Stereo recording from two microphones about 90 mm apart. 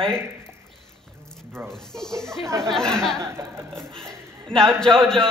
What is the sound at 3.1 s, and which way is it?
Speech, 30° right (ahead or behind).